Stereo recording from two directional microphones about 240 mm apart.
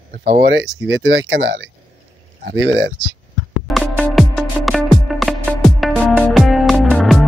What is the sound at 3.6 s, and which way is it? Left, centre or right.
Music, centre.